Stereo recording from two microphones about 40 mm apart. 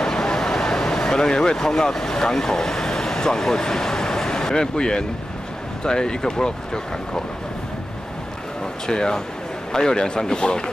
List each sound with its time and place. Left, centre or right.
0.0 s vehicle: centre
5.9 s speech: centre
8.8 s speech: centre